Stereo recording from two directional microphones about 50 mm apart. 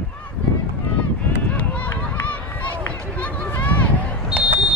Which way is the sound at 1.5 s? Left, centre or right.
Left.